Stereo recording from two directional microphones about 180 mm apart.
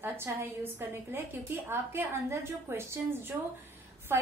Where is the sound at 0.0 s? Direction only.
10° right (ahead or behind).